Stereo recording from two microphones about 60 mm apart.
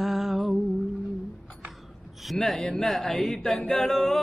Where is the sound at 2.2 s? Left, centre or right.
Centre.